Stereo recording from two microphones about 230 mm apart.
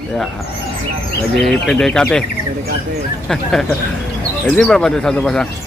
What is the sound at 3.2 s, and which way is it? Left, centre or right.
Speech, centre.